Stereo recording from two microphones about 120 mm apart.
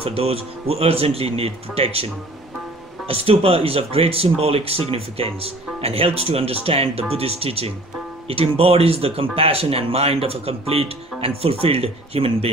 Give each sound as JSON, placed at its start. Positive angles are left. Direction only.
{"t": 0.0, "sound": "speech", "side_deg": -50}
{"t": 3.1, "sound": "speech", "side_deg": -55}